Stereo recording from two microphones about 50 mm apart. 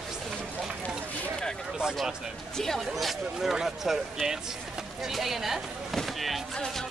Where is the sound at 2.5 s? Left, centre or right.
Centre.